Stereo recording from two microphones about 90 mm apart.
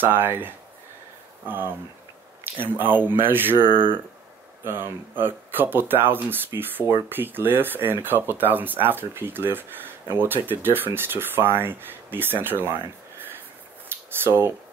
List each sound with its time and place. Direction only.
0.0 s speech: 25° right (ahead or behind)
14.2 s speech: 25° right (ahead or behind)